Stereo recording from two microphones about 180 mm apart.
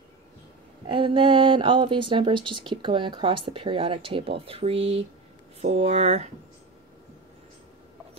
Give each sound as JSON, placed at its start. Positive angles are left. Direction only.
{"t": 0.8, "sound": "speech", "side_deg": -25}